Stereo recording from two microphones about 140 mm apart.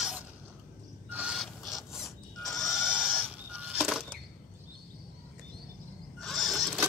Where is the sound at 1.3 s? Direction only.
Centre (ahead or behind).